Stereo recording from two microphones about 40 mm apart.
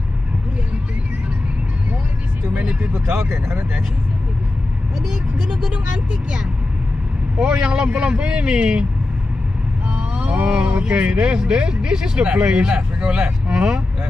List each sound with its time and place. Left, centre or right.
2.8 s speech: right
7.3 s speech: right
9.8 s speech: right